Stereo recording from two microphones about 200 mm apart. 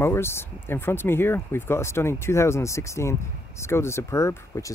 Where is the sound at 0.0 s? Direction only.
10° left (ahead or behind).